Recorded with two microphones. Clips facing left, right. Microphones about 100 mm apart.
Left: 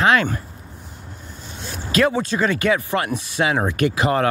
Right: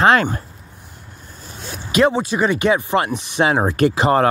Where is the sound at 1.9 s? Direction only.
20° right (ahead or behind).